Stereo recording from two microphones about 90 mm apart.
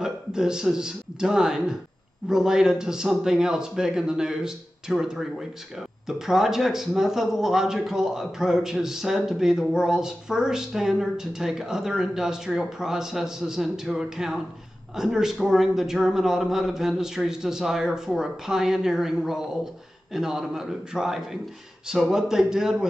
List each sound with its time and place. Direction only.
0.0 s a man's voice: 5° right (ahead or behind)